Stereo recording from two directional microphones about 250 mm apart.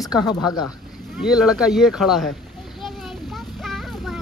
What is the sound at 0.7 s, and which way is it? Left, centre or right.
Speech, centre.